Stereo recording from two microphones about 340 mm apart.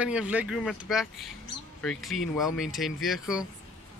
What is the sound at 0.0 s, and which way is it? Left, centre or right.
Speech, centre.